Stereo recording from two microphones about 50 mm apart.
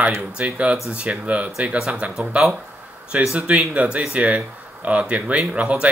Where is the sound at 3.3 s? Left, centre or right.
Right.